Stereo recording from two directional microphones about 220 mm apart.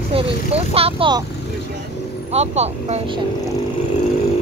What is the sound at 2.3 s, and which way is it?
Speech, 30° right (ahead or behind).